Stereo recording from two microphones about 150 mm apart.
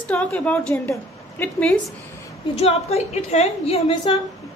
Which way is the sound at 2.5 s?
45° left (ahead or behind).